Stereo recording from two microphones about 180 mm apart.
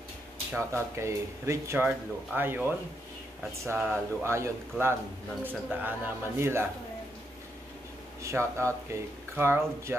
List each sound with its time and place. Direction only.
0.5 s speech: 15° right (ahead or behind)
8.2 s speech: 15° right (ahead or behind)